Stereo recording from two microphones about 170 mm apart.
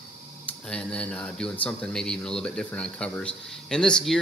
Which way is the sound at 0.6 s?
5° left (ahead or behind).